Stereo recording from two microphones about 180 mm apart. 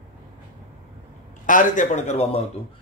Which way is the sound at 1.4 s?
45° left (ahead or behind).